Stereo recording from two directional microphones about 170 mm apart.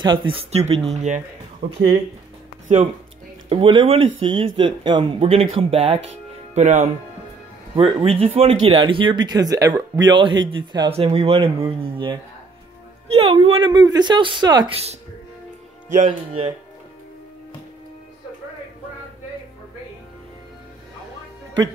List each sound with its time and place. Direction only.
0.0 s speech: 30° right (ahead or behind)
1.6 s speech: 30° right (ahead or behind)
3.4 s speech: 30° right (ahead or behind)
6.0 s music: 45° right (ahead or behind)
7.7 s speech: 35° right (ahead or behind)
13.7 s speech: 25° right (ahead or behind)
16.1 s speech: 35° right (ahead or behind)